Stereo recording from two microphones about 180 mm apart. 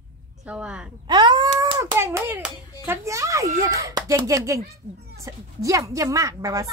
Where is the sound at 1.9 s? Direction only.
15° right (ahead or behind).